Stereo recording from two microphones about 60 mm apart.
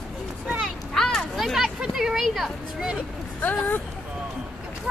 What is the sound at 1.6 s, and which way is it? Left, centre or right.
Speech, centre.